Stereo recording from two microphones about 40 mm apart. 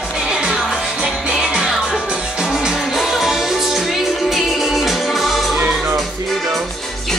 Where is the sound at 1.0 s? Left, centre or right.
Centre.